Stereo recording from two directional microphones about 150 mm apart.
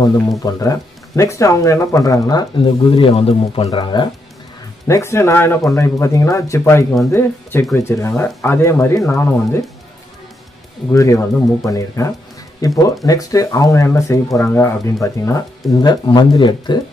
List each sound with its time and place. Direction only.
0.4 s speech: 25° left (ahead or behind)
4.8 s speech: 20° left (ahead or behind)
10.9 s speech: 20° left (ahead or behind)